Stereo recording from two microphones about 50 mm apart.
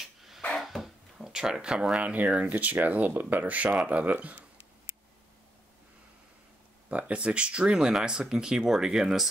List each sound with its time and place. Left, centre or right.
0.6 s a sound: centre; by 2.1 s right
2.1 s speech: right
6.9 s speech: right; by 9.3 s centre